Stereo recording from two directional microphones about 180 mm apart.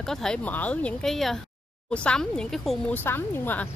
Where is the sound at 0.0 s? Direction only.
Centre (ahead or behind).